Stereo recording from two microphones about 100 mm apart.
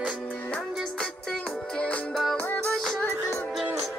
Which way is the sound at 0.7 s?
5° left (ahead or behind).